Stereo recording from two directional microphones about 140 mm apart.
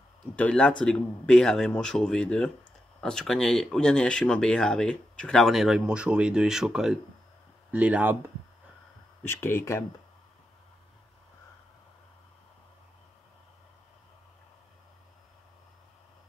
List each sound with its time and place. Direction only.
0.4 s speech: 10° left (ahead or behind); by 8.2 s 10° right (ahead or behind)
9.2 s speech: 15° left (ahead or behind)